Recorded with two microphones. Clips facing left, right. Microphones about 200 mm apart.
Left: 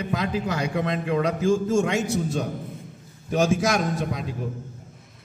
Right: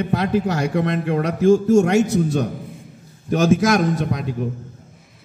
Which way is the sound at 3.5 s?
55° right (ahead or behind).